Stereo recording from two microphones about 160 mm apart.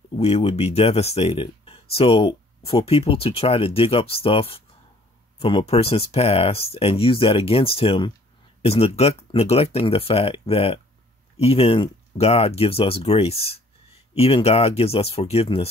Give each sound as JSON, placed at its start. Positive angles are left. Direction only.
{"t": 0.2, "sound": "speech", "side_deg": 40}